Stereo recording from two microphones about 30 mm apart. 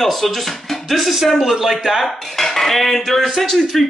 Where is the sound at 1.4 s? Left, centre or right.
Centre.